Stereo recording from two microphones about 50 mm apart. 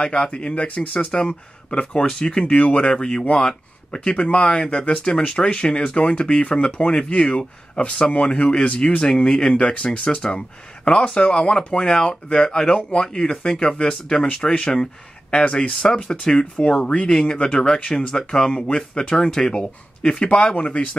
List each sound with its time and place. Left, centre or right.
0.0 s speech: left